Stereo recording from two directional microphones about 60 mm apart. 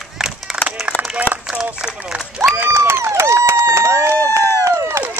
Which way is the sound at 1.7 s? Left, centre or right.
Centre.